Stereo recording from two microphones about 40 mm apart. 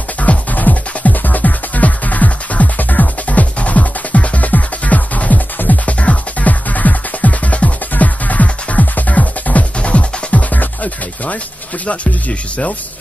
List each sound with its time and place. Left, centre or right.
0.2 s music: left
10.5 s music: left
11.8 s speech: left